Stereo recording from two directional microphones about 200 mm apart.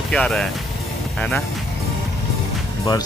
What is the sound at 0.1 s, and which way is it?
Speech, 5° left (ahead or behind).